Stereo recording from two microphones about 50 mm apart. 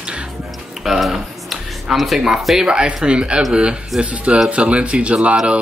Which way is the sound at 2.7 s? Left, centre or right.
Centre.